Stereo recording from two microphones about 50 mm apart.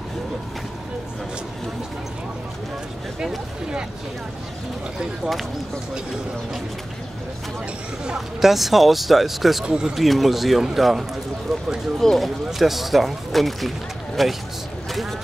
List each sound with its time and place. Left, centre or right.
8.4 s speech: centre
9.7 s speech: centre
9.9 s speech: centre
12.0 s speech: centre
12.4 s speech: centre